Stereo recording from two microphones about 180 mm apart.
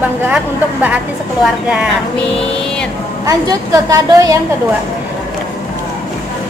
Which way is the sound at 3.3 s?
20° right (ahead or behind).